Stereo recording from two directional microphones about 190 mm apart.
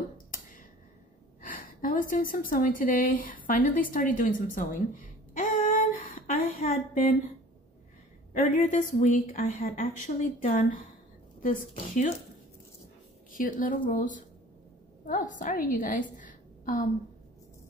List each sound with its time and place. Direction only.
1.4 s a woman's voice: 50° left (ahead or behind)
8.3 s a woman's voice: 45° left (ahead or behind)
13.3 s a woman's voice: 45° left (ahead or behind)